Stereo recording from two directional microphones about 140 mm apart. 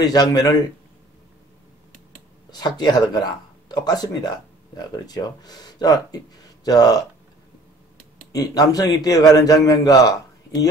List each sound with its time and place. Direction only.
0.0 s a man's voice: 30° left (ahead or behind)
2.5 s speech: 30° left (ahead or behind)
8.3 s a man's voice: 25° left (ahead or behind)